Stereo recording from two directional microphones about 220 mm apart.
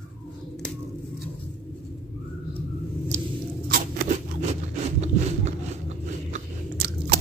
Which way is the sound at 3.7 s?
40° right (ahead or behind).